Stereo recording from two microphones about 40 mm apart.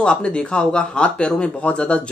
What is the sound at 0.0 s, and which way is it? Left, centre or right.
Speech, left.